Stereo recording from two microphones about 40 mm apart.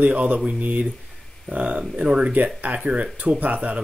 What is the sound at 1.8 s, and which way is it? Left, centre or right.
Speech, right.